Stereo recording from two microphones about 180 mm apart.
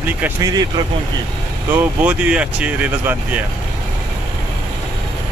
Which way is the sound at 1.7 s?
10° right (ahead or behind).